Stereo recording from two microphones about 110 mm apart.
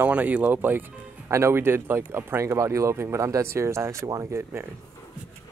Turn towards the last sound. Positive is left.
turn(degrees=-25)  # may be behind; listen again after turning